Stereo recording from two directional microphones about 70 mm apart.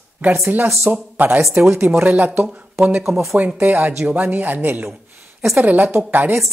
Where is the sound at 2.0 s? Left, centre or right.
Right.